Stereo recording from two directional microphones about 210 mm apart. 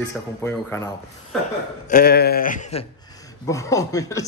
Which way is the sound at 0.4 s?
10° left (ahead or behind).